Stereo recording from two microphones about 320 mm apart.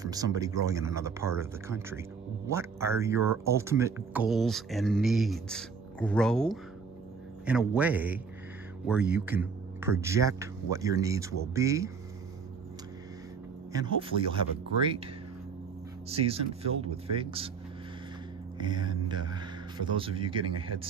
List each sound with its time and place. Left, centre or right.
0.0 s a man's voice: centre
13.7 s speech: centre
16.3 s speech: centre
18.6 s speech: centre
20.5 s speech: right